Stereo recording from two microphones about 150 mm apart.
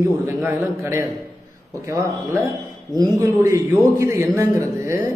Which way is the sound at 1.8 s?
20° right (ahead or behind).